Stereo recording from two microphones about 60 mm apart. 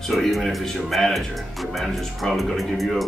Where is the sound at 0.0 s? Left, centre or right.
Centre.